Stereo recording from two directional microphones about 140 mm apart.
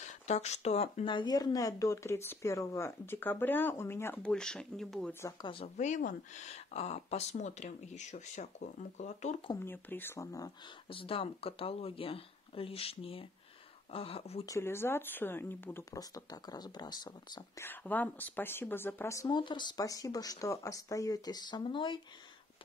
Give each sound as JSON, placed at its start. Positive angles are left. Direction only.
{"t": 0.0, "sound": "speech", "side_deg": 55}
{"t": 5.4, "sound": "speech", "side_deg": 40}
{"t": 5.8, "sound": "speech", "side_deg": 65}
{"t": 9.7, "sound": "speech", "side_deg": 15}
{"t": 10.9, "sound": "speech", "side_deg": 40}
{"t": 14.4, "sound": "speech", "side_deg": 20}
{"t": 17.6, "sound": "speech", "side_deg": 15}